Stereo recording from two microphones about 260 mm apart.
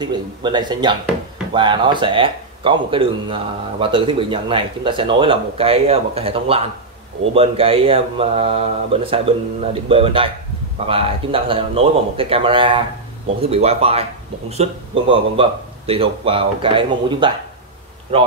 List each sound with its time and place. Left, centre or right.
0.0 s speech: centre